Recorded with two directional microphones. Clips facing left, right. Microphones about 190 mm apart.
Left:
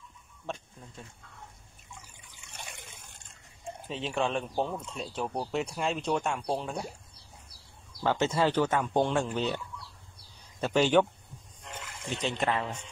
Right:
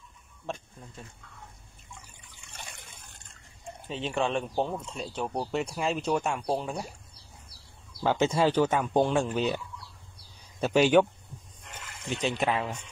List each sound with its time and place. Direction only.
0.5 s speech: centre (ahead or behind)
3.8 s speech: centre (ahead or behind)
8.0 s speech: 10° right (ahead or behind)
10.6 s speech: 10° right (ahead or behind)
12.2 s speech: 10° right (ahead or behind)